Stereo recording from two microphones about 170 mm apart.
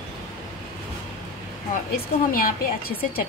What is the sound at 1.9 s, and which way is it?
Speech, 60° left (ahead or behind).